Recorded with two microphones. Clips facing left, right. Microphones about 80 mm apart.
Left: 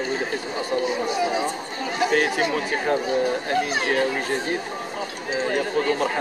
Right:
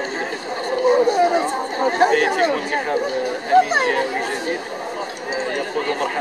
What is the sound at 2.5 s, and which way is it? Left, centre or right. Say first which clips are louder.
Speech: right 2 dB; centre.